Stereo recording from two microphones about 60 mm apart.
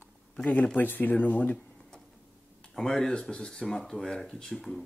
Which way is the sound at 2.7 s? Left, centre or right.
Centre.